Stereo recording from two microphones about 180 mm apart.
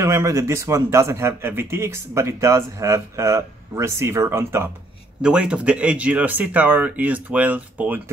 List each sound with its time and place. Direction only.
0.0 s speech: 15° right (ahead or behind)